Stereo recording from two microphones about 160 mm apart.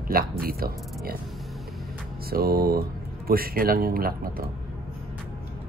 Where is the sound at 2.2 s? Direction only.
70° right (ahead or behind).